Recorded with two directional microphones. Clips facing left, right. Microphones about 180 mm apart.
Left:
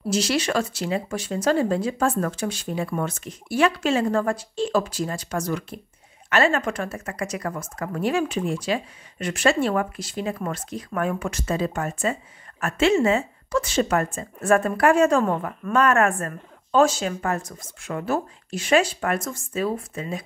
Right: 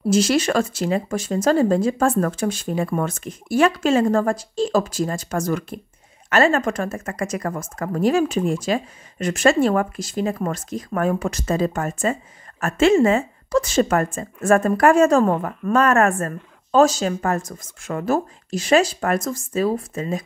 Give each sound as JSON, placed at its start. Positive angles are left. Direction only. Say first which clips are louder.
{"t": 0.1, "sound": "speech", "louder": "right 5 dB", "side_deg": -50}